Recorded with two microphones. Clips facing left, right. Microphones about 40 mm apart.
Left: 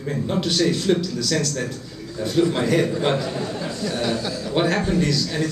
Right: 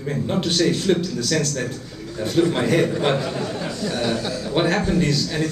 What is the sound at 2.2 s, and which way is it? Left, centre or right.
A man's voice, centre.